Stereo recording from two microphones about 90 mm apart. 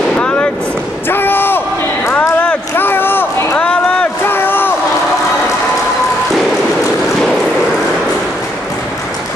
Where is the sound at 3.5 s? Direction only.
10° left (ahead or behind).